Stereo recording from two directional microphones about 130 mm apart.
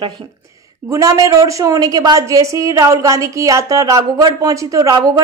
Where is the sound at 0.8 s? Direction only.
25° right (ahead or behind).